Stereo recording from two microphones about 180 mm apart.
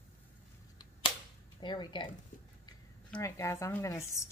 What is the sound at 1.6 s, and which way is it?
Speech, 25° left (ahead or behind).